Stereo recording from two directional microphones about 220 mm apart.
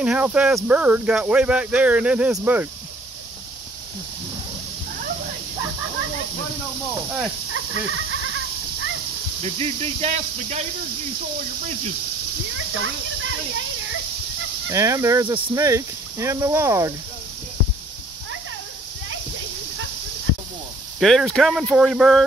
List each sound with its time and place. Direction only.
0.0 s speech: 5° right (ahead or behind)
7.5 s goat: 70° right (ahead or behind)
9.4 s speech: 25° right (ahead or behind)
12.8 s speech: 60° right (ahead or behind)
14.7 s speech: 15° right (ahead or behind)
21.0 s speech: centre (ahead or behind)